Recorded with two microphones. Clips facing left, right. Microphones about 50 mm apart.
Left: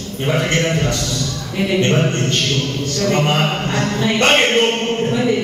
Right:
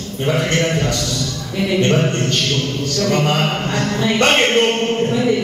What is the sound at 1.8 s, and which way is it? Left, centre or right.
Speech, centre.